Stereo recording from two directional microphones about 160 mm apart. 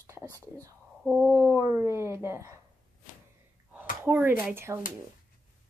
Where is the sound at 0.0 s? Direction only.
15° right (ahead or behind).